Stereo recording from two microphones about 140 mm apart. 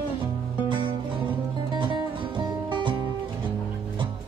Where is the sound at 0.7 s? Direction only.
35° right (ahead or behind).